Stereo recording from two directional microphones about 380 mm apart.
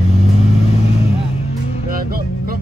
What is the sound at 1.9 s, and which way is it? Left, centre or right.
Music, right.